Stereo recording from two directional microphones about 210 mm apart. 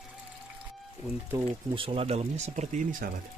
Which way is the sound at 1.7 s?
25° right (ahead or behind).